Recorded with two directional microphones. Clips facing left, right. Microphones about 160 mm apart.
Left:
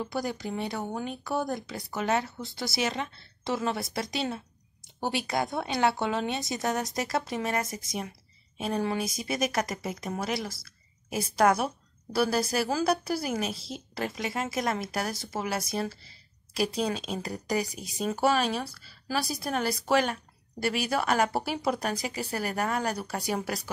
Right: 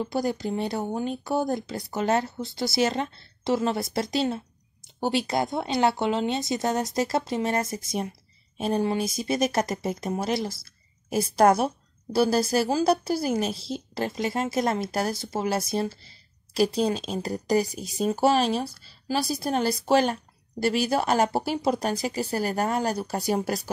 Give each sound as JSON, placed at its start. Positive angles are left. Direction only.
{"t": 0.0, "sound": "speech", "side_deg": -30}
{"t": 11.1, "sound": "speech", "side_deg": -40}